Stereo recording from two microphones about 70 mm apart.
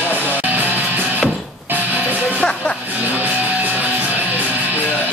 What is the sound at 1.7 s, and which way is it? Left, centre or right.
Music, right.